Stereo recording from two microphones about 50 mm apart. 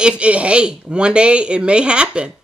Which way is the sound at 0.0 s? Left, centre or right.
Right.